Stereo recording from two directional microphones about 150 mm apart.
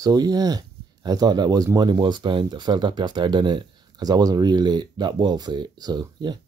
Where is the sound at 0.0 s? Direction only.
25° right (ahead or behind).